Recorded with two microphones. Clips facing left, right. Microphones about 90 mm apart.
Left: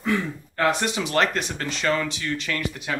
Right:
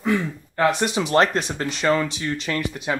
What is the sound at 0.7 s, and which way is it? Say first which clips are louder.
Speech: right 2 dB; 20° right (ahead or behind).